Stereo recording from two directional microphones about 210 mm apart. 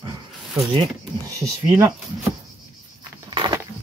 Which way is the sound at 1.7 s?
15° right (ahead or behind).